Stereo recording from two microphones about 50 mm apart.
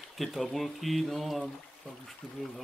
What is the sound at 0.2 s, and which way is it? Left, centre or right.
Speech, centre.